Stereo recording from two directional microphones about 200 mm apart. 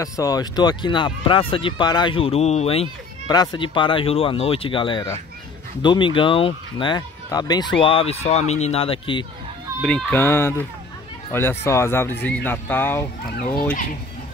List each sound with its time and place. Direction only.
0.0 s speech: 20° left (ahead or behind)
9.8 s speech: 5° left (ahead or behind)